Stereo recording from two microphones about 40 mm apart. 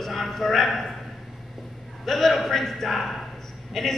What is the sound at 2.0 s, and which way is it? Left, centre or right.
A man's voice, centre.